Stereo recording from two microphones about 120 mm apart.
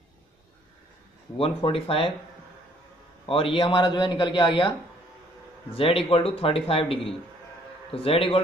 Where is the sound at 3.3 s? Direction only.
50° left (ahead or behind).